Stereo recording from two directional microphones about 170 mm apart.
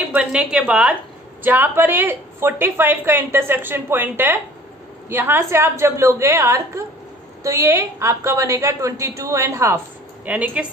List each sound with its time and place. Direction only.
0.1 s a woman's voice: 5° right (ahead or behind)